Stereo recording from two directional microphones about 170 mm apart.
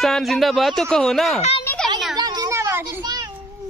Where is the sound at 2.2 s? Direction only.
25° right (ahead or behind).